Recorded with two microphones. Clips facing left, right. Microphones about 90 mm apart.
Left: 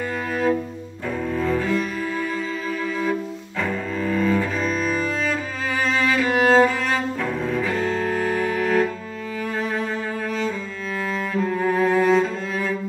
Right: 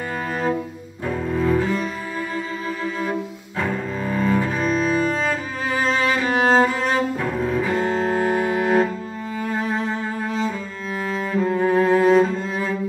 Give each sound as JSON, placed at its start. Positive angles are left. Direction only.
{"t": 1.3, "sound": "cello", "side_deg": -15}
{"t": 4.9, "sound": "music", "side_deg": -20}
{"t": 9.5, "sound": "cello", "side_deg": -25}
{"t": 11.3, "sound": "cello", "side_deg": -15}